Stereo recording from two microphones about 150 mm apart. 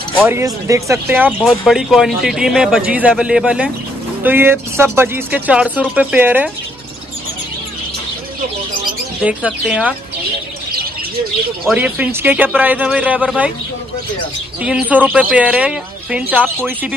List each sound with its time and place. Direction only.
0.2 s speech: 15° right (ahead or behind)
1.4 s speech: centre (ahead or behind)
9.2 s speech: 10° right (ahead or behind)
11.6 s speech: 10° right (ahead or behind)
14.6 s speech: 10° right (ahead or behind)